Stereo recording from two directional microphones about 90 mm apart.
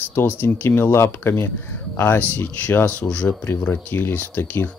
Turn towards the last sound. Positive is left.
turn(degrees=20)  # may be behind; listen again after turning